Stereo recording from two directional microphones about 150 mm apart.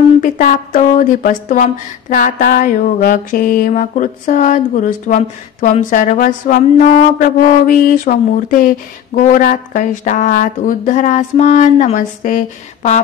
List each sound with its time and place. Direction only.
0.2 s speech: 60° left (ahead or behind)